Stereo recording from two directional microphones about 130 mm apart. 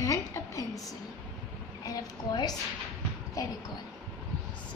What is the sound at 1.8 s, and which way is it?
A woman's voice, 30° left (ahead or behind).